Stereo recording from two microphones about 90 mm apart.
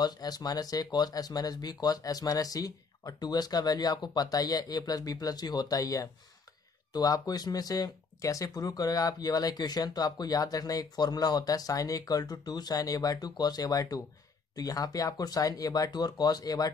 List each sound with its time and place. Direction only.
0.0 s speech: 45° left (ahead or behind)